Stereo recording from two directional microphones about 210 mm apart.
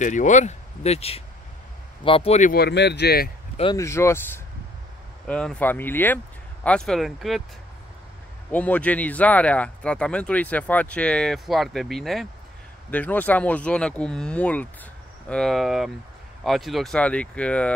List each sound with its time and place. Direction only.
0.0 s speech: 35° left (ahead or behind)
2.5 s speech: 50° left (ahead or behind)
3.7 s speech: 15° left (ahead or behind)
8.5 s speech: 5° left (ahead or behind)